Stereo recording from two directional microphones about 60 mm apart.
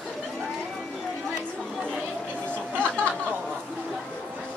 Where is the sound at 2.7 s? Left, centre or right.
Right.